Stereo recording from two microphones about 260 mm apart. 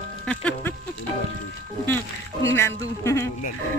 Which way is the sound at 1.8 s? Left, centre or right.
Centre.